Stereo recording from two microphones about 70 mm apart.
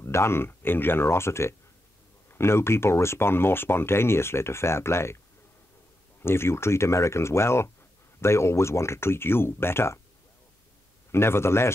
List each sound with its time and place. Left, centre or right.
0.0 s speech: left
6.2 s speech: left
11.1 s speech: left